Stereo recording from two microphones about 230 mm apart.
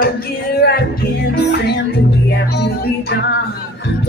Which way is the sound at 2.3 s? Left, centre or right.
Left.